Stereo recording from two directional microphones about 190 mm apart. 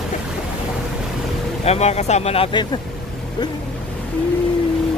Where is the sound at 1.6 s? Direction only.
35° left (ahead or behind).